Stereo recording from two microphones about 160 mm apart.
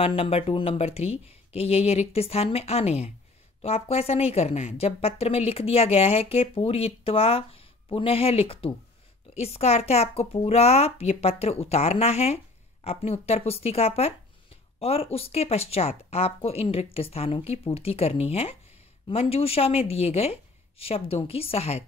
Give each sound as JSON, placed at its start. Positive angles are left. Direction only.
{"t": 0.0, "sound": "speech", "side_deg": 35}